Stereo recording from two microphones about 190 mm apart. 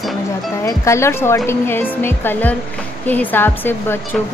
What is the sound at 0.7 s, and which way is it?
A woman's voice, 15° left (ahead or behind).